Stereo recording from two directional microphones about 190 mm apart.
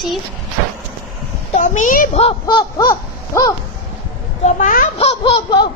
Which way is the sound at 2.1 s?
30° left (ahead or behind).